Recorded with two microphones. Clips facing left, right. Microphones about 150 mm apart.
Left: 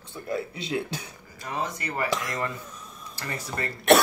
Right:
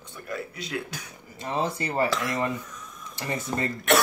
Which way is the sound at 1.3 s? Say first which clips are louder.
Right 4 dB; 25° right (ahead or behind).